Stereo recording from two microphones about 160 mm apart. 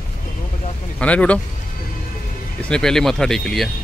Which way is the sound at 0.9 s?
10° left (ahead or behind).